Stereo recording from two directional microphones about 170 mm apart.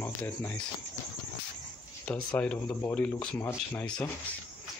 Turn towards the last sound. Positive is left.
turn(degrees=10)  # may be behind; listen again after turning